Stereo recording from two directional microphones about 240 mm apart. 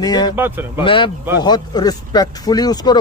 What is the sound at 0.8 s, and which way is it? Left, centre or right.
Speech, left.